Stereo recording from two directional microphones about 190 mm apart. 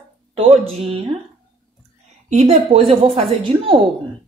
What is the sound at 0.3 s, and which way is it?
Speech, 30° right (ahead or behind).